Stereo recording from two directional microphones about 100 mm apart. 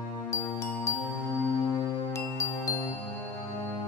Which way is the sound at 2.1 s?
30° left (ahead or behind).